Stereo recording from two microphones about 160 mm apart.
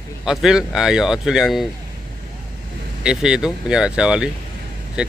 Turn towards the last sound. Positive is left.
turn(degrees=-5)  # may be behind; listen again after turning